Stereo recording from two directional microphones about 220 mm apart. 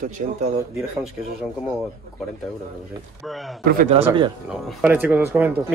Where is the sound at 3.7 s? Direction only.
40° right (ahead or behind).